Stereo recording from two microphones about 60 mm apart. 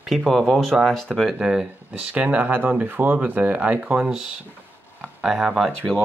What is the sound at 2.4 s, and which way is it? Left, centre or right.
Speech, right.